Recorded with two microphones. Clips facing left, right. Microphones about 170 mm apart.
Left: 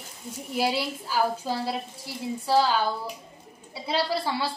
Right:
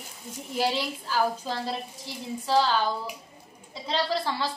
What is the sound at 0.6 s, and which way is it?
A woman's voice, 10° left (ahead or behind).